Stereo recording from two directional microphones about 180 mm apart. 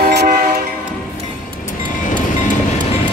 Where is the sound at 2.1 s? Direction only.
45° left (ahead or behind).